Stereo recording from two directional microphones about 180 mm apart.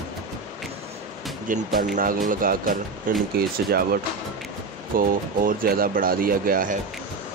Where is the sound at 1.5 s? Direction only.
50° right (ahead or behind).